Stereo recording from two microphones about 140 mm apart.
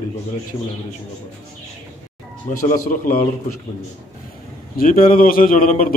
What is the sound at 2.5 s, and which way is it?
Speech, 65° left (ahead or behind).